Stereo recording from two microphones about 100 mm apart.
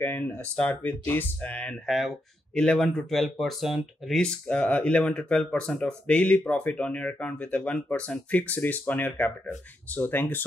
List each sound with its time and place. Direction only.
0.0 s speech: 20° left (ahead or behind)
1.9 s speech: centre (ahead or behind); by 10.2 s 20° left (ahead or behind)